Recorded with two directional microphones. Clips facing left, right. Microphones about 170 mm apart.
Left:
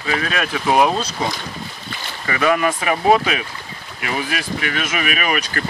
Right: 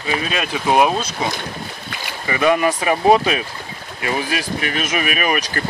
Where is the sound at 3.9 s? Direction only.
30° right (ahead or behind).